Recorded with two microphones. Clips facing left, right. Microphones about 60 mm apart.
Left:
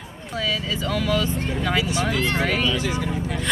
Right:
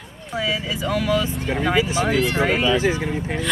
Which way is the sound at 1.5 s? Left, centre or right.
Right.